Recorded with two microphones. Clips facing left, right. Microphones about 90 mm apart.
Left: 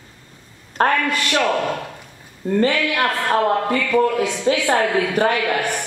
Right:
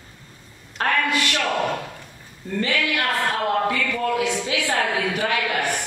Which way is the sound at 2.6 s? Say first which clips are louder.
Left 5 dB; 40° left (ahead or behind).